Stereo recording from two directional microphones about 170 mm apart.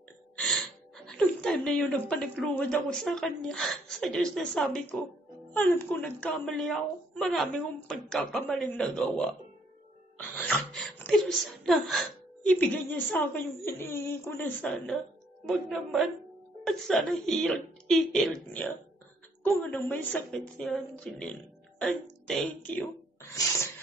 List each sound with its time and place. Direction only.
0.4 s speech: 5° left (ahead or behind)
10.3 s a woman's voice: 10° left (ahead or behind)
23.4 s a sound: 20° left (ahead or behind)